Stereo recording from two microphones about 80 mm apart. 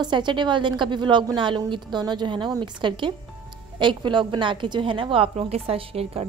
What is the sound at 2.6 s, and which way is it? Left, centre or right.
A woman's voice, right.